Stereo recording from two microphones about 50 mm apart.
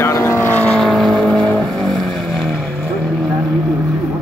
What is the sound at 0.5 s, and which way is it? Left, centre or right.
Vehicle, left.